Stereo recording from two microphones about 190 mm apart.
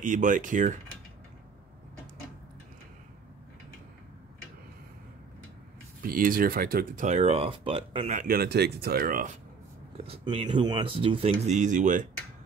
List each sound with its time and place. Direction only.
0.0 s speech: 45° right (ahead or behind)
6.0 s speech: 50° right (ahead or behind)
10.0 s speech: 30° right (ahead or behind)